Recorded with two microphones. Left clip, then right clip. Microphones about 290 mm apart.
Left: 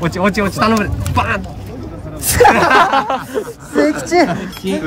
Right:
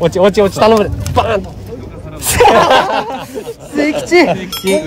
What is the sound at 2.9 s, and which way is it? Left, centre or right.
Speech, centre.